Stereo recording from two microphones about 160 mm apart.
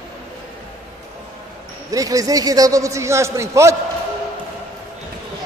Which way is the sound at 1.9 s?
20° right (ahead or behind).